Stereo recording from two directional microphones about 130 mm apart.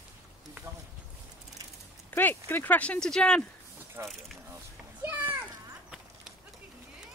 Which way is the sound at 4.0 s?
20° right (ahead or behind).